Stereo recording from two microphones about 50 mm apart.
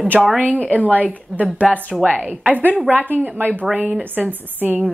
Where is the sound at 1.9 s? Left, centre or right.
Centre.